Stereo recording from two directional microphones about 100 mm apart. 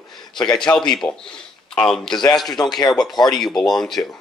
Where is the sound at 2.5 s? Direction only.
45° left (ahead or behind).